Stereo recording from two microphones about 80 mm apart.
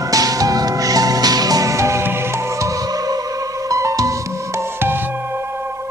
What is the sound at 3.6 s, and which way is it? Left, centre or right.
Music, right.